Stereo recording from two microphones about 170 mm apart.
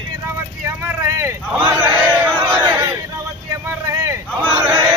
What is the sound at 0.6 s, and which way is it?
Vehicle, 15° right (ahead or behind).